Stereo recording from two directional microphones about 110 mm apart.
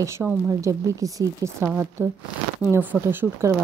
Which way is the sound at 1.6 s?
15° right (ahead or behind).